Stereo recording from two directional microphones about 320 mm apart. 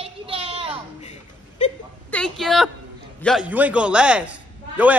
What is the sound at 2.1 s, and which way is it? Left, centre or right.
A woman's voice, centre.